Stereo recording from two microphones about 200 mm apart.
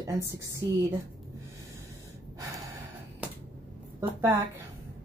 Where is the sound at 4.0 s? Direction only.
15° right (ahead or behind).